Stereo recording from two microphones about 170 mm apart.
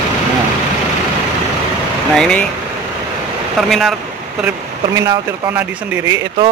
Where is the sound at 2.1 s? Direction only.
5° left (ahead or behind).